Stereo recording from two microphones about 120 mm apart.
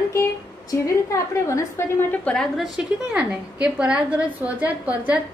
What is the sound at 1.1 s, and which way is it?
A woman's voice, 25° left (ahead or behind).